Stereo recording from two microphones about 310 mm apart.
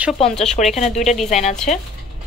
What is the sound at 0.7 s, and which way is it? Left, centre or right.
Speech, left.